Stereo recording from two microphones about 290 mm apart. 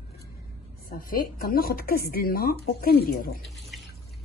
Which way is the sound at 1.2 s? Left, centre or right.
Left.